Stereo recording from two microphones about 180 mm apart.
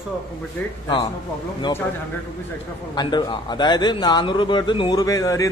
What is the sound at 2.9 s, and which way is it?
A man's voice, 25° left (ahead or behind).